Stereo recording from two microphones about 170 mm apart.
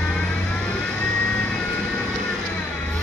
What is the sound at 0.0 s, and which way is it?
Vehicle, 5° left (ahead or behind).